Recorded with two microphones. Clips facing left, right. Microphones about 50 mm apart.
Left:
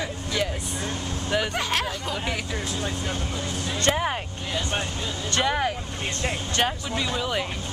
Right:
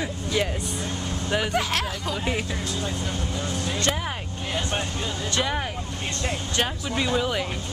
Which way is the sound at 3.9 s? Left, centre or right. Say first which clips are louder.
Left 4 dB; centre.